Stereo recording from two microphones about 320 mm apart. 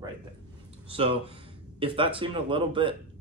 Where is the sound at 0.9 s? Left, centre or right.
Centre.